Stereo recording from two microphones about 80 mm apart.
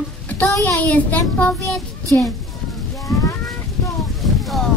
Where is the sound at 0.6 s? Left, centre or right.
Centre.